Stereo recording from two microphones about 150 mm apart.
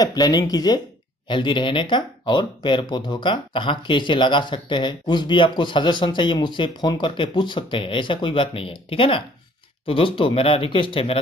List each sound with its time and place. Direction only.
0.0 s speech: 25° left (ahead or behind)